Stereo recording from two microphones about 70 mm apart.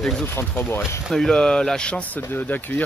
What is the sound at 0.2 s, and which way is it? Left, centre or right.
Speech, left.